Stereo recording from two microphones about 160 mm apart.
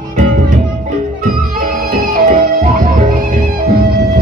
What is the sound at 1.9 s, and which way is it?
Music, 65° right (ahead or behind).